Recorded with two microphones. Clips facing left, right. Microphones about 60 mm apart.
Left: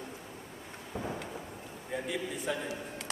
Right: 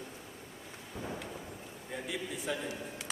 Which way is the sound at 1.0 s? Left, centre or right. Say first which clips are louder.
Left 4 dB; left.